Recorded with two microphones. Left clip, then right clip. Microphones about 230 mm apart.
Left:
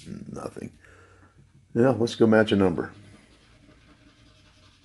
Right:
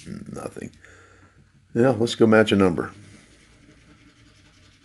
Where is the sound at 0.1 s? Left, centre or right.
Centre.